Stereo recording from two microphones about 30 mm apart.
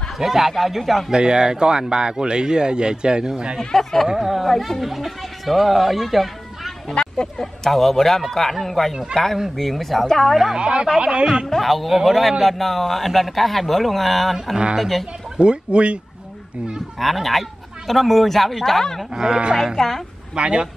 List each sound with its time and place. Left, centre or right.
0.2 s a man's voice: centre
1.1 s speech: right
3.5 s speech: centre
4.3 s speech: centre
7.0 s a sound: left
7.3 s a man's voice: centre
10.0 s speech: centre
10.5 s speech: right
11.4 s a man's voice: centre
15.3 s speech: right
17.0 s a man's voice: centre
19.1 s speech: centre
19.8 s speech: centre
20.3 s speech: right